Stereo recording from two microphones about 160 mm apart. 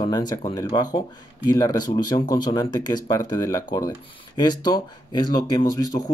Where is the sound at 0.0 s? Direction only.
25° left (ahead or behind).